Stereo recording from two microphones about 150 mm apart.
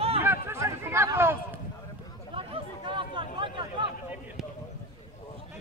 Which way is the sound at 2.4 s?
35° right (ahead or behind).